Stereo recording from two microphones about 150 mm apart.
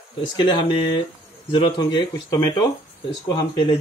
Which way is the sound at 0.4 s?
30° left (ahead or behind).